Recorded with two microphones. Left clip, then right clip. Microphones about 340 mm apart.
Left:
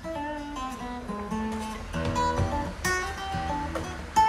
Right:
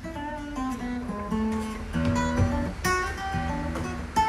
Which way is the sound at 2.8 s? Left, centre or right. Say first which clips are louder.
Right 3 dB; centre.